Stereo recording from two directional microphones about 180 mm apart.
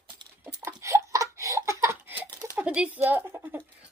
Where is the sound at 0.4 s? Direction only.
15° right (ahead or behind).